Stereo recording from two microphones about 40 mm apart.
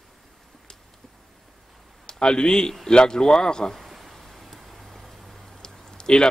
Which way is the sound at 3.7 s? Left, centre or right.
Centre.